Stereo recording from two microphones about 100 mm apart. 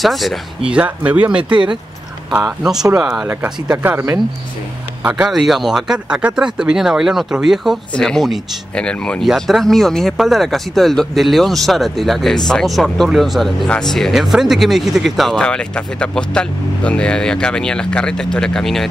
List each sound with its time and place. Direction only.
0.0 s speech: centre (ahead or behind)
0.7 s speech: 15° right (ahead or behind)
1.5 s speech: 50° right (ahead or behind)
2.6 s speech: 5° right (ahead or behind)
3.7 s speech: 25° right (ahead or behind)
5.0 s speech: 15° right (ahead or behind)
5.3 s speech: centre (ahead or behind)
9.2 s speech: centre (ahead or behind)